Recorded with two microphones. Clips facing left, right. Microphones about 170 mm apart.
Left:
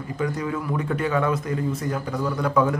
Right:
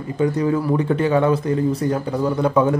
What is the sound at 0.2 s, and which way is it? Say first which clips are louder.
Speech: right 8 dB; 30° right (ahead or behind).